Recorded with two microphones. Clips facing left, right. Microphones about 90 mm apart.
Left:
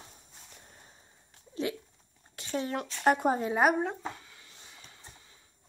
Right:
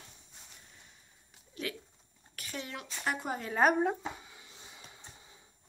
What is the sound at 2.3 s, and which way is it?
Speech, 30° left (ahead or behind).